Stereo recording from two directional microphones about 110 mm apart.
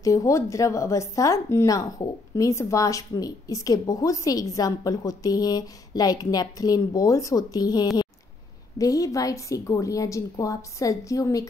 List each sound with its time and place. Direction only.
0.0 s speech: 30° left (ahead or behind)